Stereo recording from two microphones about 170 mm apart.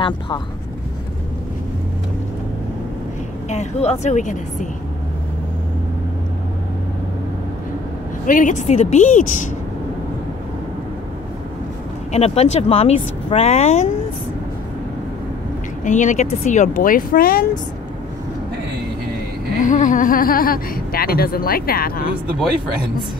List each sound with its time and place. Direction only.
3.4 s speech: 40° left (ahead or behind)
8.3 s speech: 50° left (ahead or behind)
12.1 s speech: 40° left (ahead or behind)
15.8 s speech: 45° left (ahead or behind)
19.7 s speech: 50° left (ahead or behind)